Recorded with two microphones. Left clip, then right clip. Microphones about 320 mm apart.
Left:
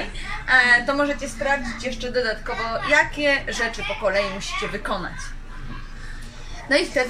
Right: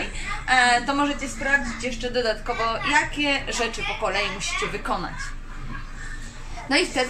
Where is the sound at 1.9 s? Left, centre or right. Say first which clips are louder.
Left 1 dB; left.